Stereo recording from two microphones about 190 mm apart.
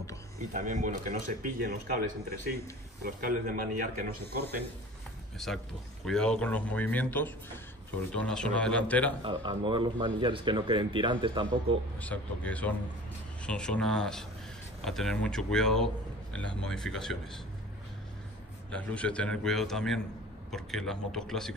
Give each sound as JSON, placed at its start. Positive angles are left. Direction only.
{"t": 0.5, "sound": "a man's voice", "side_deg": -40}
{"t": 5.4, "sound": "a man's voice", "side_deg": 0}
{"t": 9.2, "sound": "speech", "side_deg": -25}
{"t": 12.0, "sound": "a man's voice", "side_deg": 10}
{"t": 18.7, "sound": "a man's voice", "side_deg": 5}